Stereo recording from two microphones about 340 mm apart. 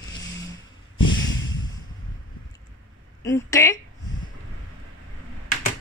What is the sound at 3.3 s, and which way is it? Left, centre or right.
Speech, centre.